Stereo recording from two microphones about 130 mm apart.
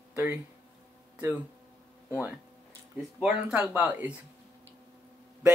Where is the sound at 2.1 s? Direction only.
10° right (ahead or behind).